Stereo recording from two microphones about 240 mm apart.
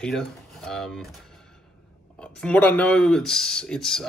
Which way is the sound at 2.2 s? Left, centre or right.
Centre.